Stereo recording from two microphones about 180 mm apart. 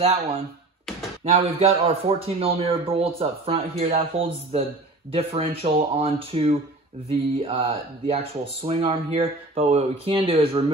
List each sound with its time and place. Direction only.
0.0 s speech: 35° right (ahead or behind)
1.4 s speech: 30° right (ahead or behind)